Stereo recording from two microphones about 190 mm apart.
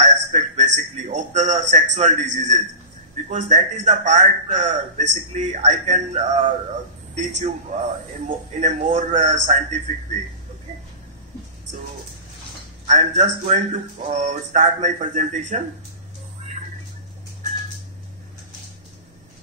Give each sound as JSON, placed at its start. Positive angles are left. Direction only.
{"t": 0.0, "sound": "a man's voice", "side_deg": -35}
{"t": 12.8, "sound": "a man's voice", "side_deg": -40}